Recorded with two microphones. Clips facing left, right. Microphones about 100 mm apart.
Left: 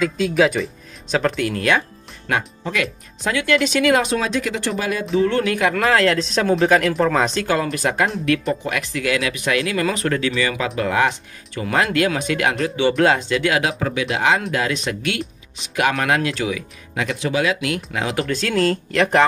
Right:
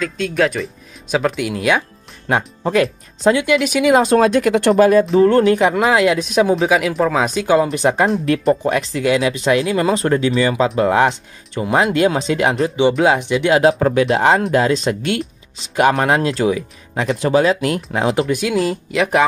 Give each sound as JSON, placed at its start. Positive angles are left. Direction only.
{"t": 0.0, "sound": "speech", "side_deg": 5}
{"t": 2.3, "sound": "speech", "side_deg": -30}
{"t": 3.5, "sound": "speech", "side_deg": -10}
{"t": 4.1, "sound": "speech", "side_deg": -50}
{"t": 5.5, "sound": "speech", "side_deg": -25}
{"t": 13.5, "sound": "speech", "side_deg": -35}
{"t": 18.3, "sound": "speech", "side_deg": -10}